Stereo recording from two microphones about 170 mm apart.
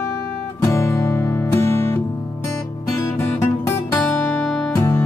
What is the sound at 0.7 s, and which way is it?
Music, 15° left (ahead or behind).